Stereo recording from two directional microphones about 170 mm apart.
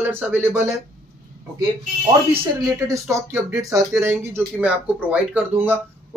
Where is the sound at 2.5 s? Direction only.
20° right (ahead or behind).